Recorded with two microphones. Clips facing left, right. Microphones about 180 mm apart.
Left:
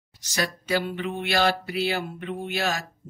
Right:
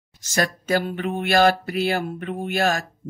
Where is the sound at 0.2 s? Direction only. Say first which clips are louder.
Right 5 dB; 50° right (ahead or behind).